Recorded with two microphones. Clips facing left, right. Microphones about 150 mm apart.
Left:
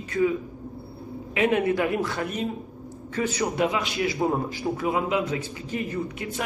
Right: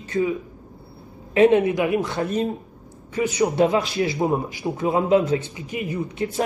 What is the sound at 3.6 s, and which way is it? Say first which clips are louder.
Speech: right 5 dB; 35° right (ahead or behind).